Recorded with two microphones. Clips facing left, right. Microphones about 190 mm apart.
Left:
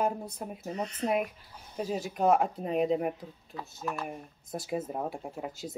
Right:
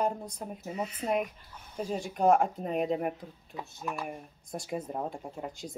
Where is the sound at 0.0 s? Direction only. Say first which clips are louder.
Left 1 dB; 5° left (ahead or behind).